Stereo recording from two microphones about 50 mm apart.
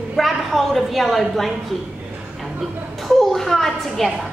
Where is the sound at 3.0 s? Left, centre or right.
Centre.